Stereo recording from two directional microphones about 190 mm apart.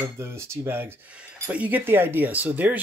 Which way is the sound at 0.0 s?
15° right (ahead or behind).